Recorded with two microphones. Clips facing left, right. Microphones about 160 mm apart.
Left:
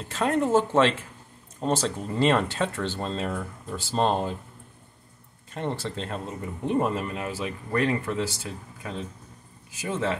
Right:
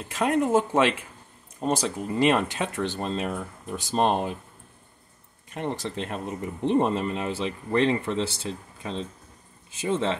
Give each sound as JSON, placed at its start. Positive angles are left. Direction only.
{"t": 0.1, "sound": "speech", "side_deg": -15}
{"t": 5.5, "sound": "speech", "side_deg": -15}